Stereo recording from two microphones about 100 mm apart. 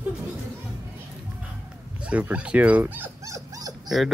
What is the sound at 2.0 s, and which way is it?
Speech, 15° right (ahead or behind).